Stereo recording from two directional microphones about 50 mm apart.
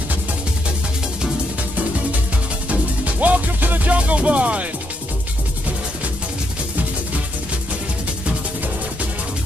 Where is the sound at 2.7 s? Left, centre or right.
Right.